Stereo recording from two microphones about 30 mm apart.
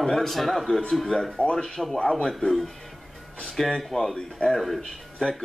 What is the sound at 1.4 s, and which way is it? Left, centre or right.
Speech, left.